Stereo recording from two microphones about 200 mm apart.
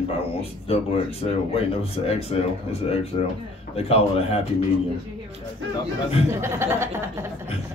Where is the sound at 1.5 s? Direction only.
30° left (ahead or behind).